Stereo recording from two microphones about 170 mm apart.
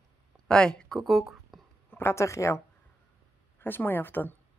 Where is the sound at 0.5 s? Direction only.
5° left (ahead or behind).